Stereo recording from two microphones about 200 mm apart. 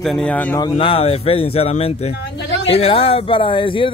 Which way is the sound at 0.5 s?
25° left (ahead or behind).